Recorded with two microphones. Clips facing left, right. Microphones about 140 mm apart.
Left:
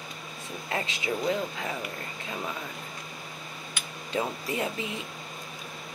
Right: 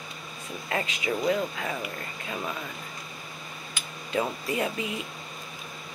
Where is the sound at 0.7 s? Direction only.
25° left (ahead or behind).